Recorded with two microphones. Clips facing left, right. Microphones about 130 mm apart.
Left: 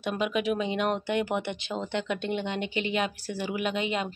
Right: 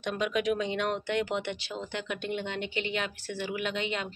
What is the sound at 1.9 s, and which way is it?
Speech, 25° left (ahead or behind).